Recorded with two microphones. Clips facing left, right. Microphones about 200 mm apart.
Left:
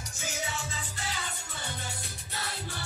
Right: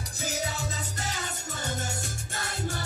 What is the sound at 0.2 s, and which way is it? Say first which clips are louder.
Music: right 4 dB; 40° right (ahead or behind).